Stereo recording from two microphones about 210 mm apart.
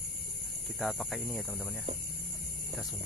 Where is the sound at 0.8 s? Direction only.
Centre (ahead or behind).